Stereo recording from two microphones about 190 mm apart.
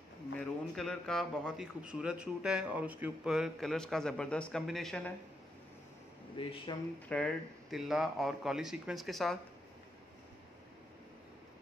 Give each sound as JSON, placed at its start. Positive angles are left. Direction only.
{"t": 0.4, "sound": "a man's voice", "side_deg": 0}
{"t": 6.3, "sound": "speech", "side_deg": 25}
{"t": 7.1, "sound": "a man's voice", "side_deg": 5}